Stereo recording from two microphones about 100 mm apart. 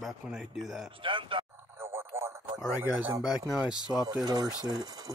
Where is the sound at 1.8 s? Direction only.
25° right (ahead or behind).